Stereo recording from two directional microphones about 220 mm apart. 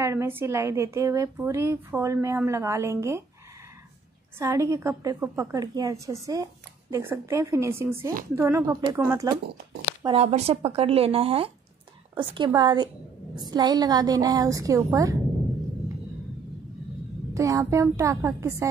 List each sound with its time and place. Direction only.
0.0 s a woman's voice: 10° right (ahead or behind)
4.4 s a woman's voice: 15° right (ahead or behind)
10.0 s a woman's voice: 30° right (ahead or behind)
17.3 s a woman's voice: 15° right (ahead or behind)